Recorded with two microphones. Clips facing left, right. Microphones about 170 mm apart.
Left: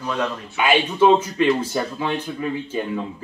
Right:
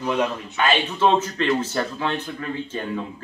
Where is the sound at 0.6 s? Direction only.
10° left (ahead or behind).